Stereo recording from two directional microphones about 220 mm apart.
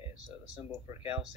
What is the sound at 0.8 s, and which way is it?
Speech, 15° right (ahead or behind).